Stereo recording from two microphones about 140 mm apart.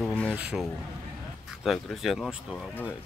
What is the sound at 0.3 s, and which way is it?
Speech, 10° right (ahead or behind).